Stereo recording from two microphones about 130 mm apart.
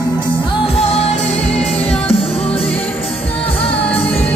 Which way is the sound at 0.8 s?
55° left (ahead or behind).